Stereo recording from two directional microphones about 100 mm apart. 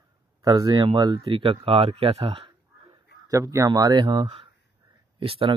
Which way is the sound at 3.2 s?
35° right (ahead or behind).